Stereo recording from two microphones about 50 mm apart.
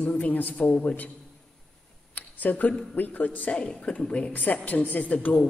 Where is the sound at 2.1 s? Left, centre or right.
Left.